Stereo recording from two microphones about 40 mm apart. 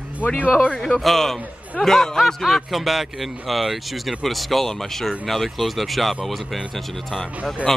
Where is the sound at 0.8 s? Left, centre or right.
Centre.